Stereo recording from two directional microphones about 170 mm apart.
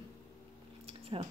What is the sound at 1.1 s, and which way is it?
Speech, 30° right (ahead or behind).